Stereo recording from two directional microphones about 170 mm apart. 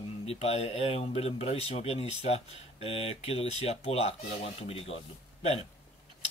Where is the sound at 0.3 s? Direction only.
35° left (ahead or behind).